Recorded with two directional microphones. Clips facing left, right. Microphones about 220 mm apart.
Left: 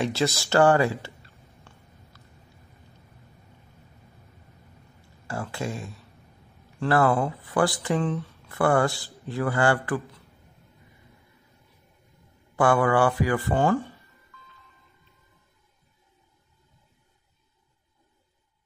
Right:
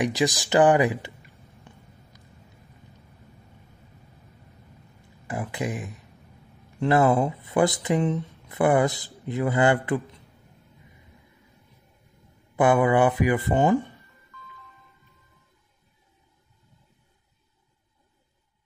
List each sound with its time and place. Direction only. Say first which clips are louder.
0.0 s speech: right 2 dB; 15° right (ahead or behind)
5.2 s speech: right 2 dB; 20° right (ahead or behind)
12.5 s speech: right 2 dB; 20° right (ahead or behind)